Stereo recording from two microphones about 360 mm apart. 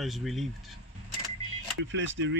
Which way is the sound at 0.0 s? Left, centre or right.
Centre.